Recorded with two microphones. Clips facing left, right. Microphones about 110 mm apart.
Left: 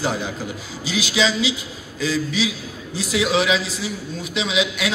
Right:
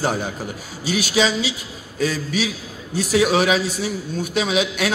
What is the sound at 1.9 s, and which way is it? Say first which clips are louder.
A man's voice: even; 55° right (ahead or behind).